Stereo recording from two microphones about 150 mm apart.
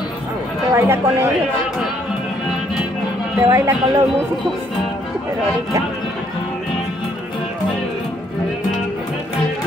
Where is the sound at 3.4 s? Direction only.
20° right (ahead or behind).